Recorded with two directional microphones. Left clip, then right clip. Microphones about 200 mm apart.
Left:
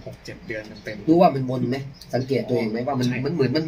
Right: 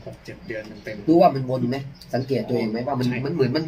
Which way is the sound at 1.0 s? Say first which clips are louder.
Right 1 dB; 20° right (ahead or behind).